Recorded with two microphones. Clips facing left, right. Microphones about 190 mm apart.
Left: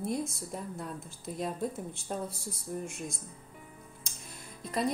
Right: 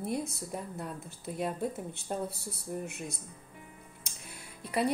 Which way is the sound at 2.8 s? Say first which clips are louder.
Even; 65° right (ahead or behind).